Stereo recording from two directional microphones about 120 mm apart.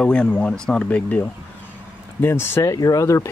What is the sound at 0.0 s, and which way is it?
Speech, 5° left (ahead or behind).